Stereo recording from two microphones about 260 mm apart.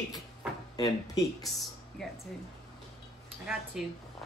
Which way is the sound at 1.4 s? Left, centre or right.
Centre.